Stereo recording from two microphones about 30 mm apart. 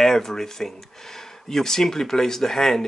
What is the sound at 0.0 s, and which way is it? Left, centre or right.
Speech, centre.